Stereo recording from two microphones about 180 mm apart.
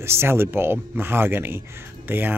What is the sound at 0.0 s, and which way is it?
Speech, 15° right (ahead or behind).